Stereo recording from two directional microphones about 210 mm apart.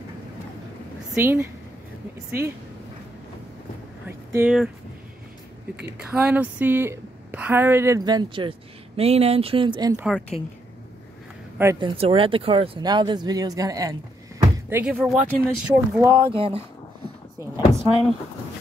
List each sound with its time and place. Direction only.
1.1 s a woman's voice: 10° right (ahead or behind)
4.3 s speech: 10° right (ahead or behind)
5.9 s a woman's voice: 5° right (ahead or behind)
9.9 s speech: centre (ahead or behind)
11.5 s speech: 15° right (ahead or behind)
12.0 s speech: 25° right (ahead or behind)
14.4 s a sound: 10° right (ahead or behind)
15.0 s speech: centre (ahead or behind)
16.2 s speech: 25° right (ahead or behind)
17.6 s speech: 25° left (ahead or behind)